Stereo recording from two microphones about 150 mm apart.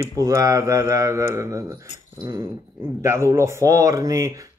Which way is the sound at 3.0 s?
20° right (ahead or behind).